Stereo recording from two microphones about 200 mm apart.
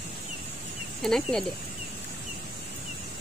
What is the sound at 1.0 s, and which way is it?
Speech, 5° left (ahead or behind).